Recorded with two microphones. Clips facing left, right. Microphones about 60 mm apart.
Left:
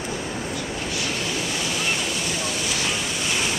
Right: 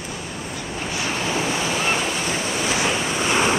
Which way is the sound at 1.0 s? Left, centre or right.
Right.